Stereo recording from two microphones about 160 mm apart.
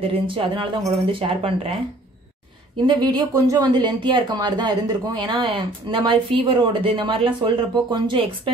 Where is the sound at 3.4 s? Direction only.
25° right (ahead or behind).